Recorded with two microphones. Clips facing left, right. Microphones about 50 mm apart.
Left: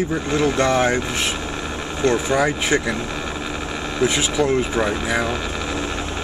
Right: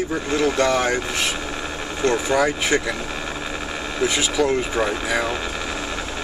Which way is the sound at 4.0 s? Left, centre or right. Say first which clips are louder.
Left 1 dB; left.